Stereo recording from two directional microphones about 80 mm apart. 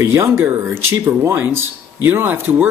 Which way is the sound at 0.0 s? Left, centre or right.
Right.